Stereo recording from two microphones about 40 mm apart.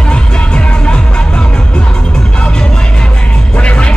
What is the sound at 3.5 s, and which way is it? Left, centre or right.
Music, left.